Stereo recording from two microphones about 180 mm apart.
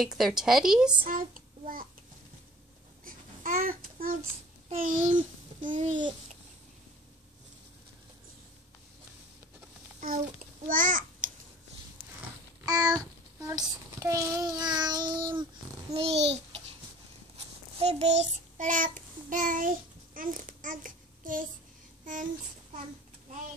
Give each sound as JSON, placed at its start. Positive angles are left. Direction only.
{"t": 0.0, "sound": "a woman's voice", "side_deg": 0}
{"t": 1.0, "sound": "child singing", "side_deg": -50}
{"t": 3.1, "sound": "babbling", "side_deg": -50}
{"t": 4.7, "sound": "a child's voice", "side_deg": -45}
{"t": 5.6, "sound": "babbling", "side_deg": -45}
{"t": 5.9, "sound": "child singing", "side_deg": -25}
{"t": 9.9, "sound": "a child's voice", "side_deg": -50}
{"t": 12.6, "sound": "a child's voice", "side_deg": -20}
{"t": 14.8, "sound": "child singing", "side_deg": -25}
{"t": 16.0, "sound": "babbling", "side_deg": -35}
{"t": 17.7, "sound": "child singing", "side_deg": -35}